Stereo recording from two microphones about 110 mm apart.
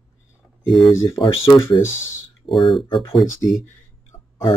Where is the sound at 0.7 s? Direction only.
Centre (ahead or behind).